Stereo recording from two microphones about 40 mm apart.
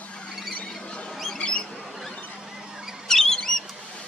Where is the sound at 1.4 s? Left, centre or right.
Left.